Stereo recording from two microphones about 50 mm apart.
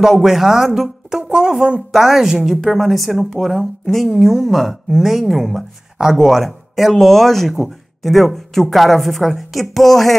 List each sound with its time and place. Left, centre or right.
0.0 s speech: centre
1.3 s speech: centre
2.5 s speech: centre